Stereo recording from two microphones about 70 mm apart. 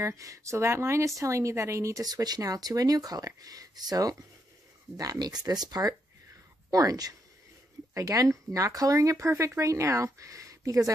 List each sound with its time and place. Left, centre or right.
0.0 s a woman's voice: right
2.0 s speech: right
7.9 s a woman's voice: right